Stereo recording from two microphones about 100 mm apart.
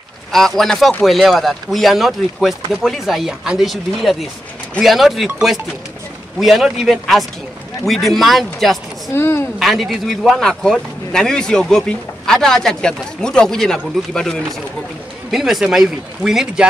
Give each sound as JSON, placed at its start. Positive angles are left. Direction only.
{"t": 0.3, "sound": "speech", "side_deg": 5}
{"t": 9.1, "sound": "a woman's voice", "side_deg": 25}
{"t": 9.6, "sound": "speech", "side_deg": 0}